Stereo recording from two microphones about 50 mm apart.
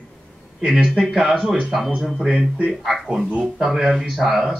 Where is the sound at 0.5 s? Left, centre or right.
Centre.